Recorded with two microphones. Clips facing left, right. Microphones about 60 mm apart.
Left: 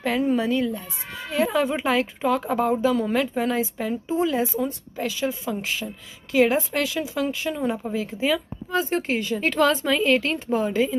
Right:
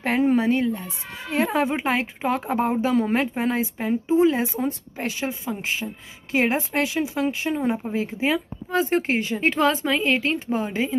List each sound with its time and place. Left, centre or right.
0.0 s a woman's voice: right
1.7 s a woman's voice: right
4.6 s a woman's voice: right
5.4 s a woman's voice: right
9.5 s a woman's voice: right